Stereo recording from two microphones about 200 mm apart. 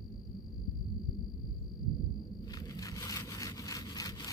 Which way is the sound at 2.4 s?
20° left (ahead or behind).